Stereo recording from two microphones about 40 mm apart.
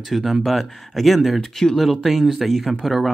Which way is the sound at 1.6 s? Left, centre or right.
Centre.